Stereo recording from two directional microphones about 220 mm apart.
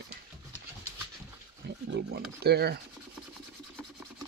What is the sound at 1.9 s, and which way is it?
Speech, 50° right (ahead or behind).